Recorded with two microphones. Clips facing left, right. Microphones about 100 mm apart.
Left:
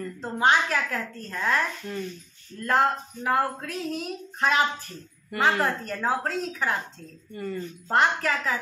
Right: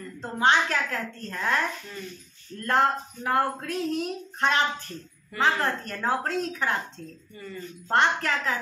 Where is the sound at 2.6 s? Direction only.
Centre (ahead or behind).